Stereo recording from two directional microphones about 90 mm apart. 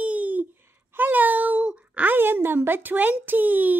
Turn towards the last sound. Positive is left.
turn(degrees=-20)  # may be behind; listen again after turning